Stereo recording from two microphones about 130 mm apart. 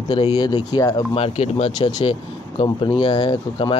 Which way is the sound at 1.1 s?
50° left (ahead or behind).